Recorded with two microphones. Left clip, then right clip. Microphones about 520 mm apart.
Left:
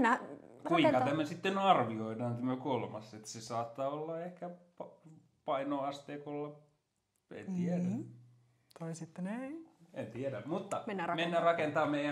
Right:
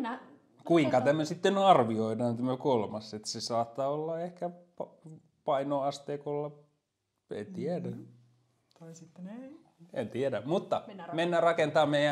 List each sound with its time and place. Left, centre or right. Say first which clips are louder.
0.7 s speech: right 3 dB; right
8.7 s speech: left 6 dB; left
9.9 s speech: right 8 dB; right
10.9 s speech: left 6 dB; left
11.1 s speech: right 6 dB; right